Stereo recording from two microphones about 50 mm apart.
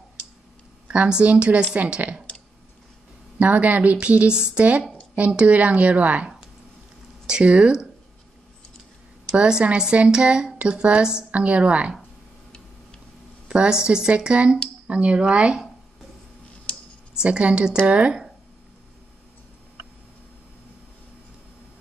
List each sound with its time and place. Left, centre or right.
0.8 s speech: right
3.3 s speech: right
7.2 s speech: centre
9.3 s speech: centre
13.5 s speech: centre
16.7 s computer keyboard: centre
17.2 s speech: right